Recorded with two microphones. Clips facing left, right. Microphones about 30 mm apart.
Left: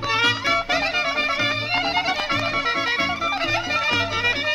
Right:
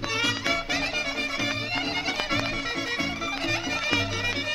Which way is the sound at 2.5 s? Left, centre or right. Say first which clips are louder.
Left 7 dB; left.